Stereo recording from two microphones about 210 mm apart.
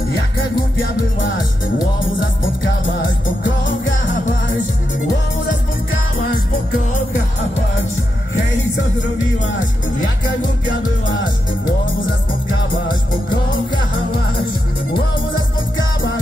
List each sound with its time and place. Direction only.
3.4 s music: 60° left (ahead or behind)